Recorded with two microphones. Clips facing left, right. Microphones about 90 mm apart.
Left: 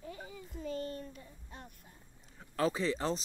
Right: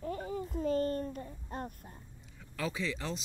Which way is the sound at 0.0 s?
45° right (ahead or behind).